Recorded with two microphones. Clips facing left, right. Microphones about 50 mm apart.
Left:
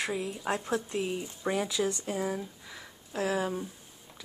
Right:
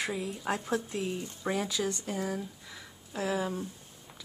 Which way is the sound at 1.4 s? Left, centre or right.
Centre.